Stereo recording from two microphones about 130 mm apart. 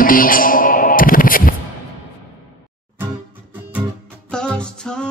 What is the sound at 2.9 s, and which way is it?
Music, 15° right (ahead or behind).